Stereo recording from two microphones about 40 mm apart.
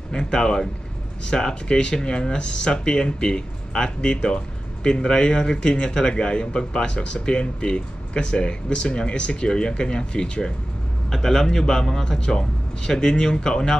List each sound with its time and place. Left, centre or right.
0.1 s a man's voice: centre
11.1 s a man's voice: centre